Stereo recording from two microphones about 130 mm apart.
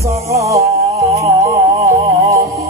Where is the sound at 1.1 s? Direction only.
55° right (ahead or behind).